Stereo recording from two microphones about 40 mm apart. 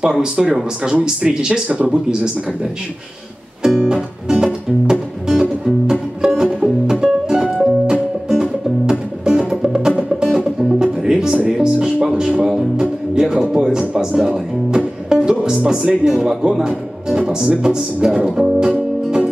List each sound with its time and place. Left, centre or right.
0.0 s speech: centre
3.6 s music: centre
15.6 s speech: right